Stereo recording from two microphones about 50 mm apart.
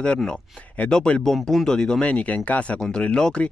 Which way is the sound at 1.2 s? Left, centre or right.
Centre.